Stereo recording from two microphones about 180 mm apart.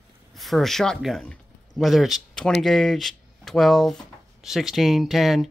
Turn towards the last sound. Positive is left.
turn(degrees=0)  # may be behind; listen again after turning